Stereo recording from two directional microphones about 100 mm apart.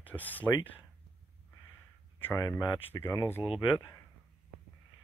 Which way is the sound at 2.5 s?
20° left (ahead or behind).